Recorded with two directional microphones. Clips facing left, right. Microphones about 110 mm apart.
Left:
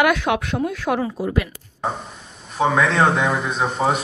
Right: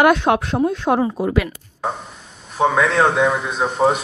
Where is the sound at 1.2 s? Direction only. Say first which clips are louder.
Right 3 dB; 70° right (ahead or behind).